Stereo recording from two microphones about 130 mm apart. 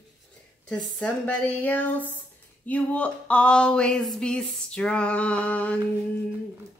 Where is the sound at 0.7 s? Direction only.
10° left (ahead or behind).